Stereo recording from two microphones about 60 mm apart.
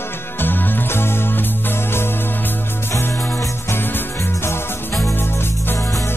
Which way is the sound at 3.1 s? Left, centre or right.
Left.